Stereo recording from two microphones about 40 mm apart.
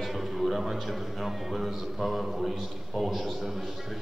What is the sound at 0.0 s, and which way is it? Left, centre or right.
A man's voice, centre.